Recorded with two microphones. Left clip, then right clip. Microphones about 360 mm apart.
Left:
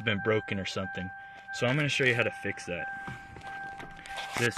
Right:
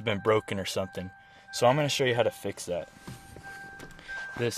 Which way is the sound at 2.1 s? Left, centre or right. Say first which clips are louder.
Right 2 dB; right.